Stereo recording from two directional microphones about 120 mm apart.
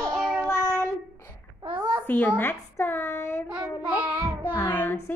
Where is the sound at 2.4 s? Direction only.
20° left (ahead or behind).